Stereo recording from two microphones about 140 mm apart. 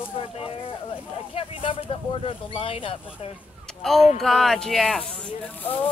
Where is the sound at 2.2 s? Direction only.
40° left (ahead or behind).